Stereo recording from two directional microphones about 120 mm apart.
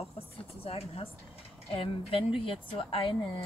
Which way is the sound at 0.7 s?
55° left (ahead or behind).